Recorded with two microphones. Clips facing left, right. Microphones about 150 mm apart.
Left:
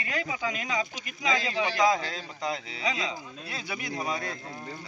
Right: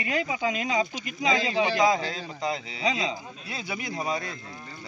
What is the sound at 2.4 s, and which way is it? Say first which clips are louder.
Speech: right 2 dB; 10° right (ahead or behind).